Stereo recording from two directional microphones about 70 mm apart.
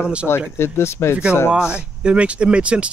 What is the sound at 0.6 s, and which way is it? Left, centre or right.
Speech, left.